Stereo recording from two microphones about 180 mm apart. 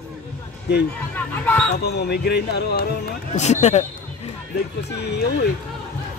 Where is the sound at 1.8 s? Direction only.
65° left (ahead or behind).